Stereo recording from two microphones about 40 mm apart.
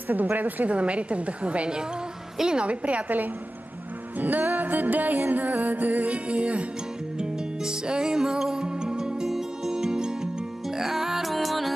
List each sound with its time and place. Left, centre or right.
0.1 s music: right
0.7 s a woman's voice: right
2.3 s a woman's voice: centre
2.6 s a woman's voice: right
4.2 s music: right
6.1 s a woman's voice: right
7.2 s music: right; by 11.7 s centre